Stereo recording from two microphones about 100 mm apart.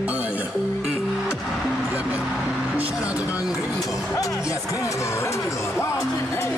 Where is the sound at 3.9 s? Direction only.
35° left (ahead or behind).